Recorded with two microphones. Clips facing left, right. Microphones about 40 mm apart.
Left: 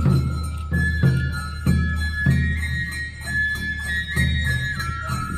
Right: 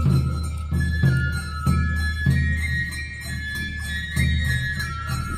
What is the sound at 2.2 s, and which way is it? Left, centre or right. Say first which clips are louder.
Music: left 3 dB; left.